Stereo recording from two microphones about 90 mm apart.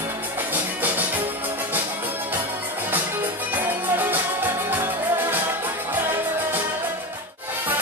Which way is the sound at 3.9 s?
20° right (ahead or behind).